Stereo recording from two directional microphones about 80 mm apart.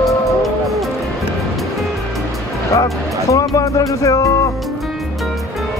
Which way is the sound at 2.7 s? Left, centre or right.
Left.